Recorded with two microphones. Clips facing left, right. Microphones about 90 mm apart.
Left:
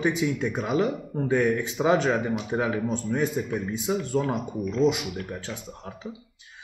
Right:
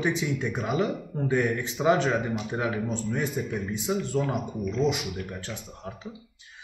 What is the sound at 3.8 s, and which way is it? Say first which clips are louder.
Speech: left 1 dB; 15° left (ahead or behind).